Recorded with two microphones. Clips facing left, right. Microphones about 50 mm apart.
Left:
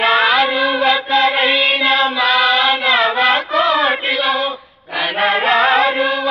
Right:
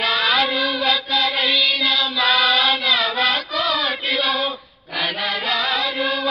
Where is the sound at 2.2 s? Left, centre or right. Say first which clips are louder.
Left 1 dB; centre.